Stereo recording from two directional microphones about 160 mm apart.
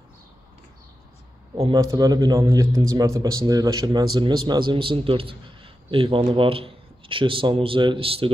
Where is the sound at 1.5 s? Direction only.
25° right (ahead or behind).